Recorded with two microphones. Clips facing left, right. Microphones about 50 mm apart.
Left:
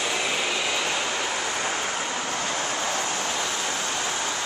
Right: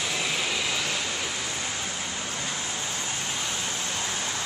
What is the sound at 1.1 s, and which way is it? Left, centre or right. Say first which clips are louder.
Vehicle: left 5 dB; left.